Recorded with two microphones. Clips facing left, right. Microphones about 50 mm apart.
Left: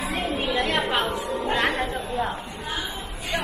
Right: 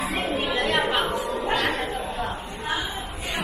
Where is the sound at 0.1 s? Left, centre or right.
Centre.